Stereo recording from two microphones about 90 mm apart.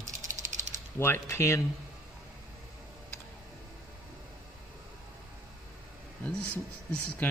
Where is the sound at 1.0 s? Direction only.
30° left (ahead or behind).